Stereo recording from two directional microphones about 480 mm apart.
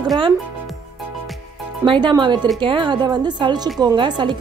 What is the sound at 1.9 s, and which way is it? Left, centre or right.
A woman's voice, centre.